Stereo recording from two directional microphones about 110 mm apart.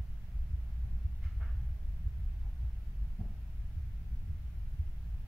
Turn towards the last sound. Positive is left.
turn(degrees=-15)  # may be behind; listen again after turning